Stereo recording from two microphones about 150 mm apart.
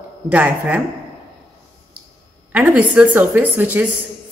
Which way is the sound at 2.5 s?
10° right (ahead or behind).